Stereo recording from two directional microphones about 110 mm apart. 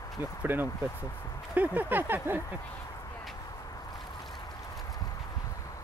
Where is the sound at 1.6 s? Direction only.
15° right (ahead or behind).